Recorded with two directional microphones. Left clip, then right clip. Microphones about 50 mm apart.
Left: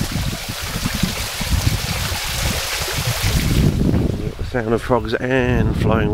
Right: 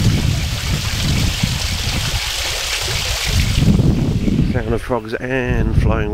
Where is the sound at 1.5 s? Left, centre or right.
Centre.